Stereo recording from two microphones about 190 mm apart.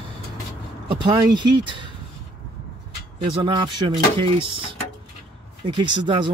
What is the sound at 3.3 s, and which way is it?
Speech, 25° right (ahead or behind).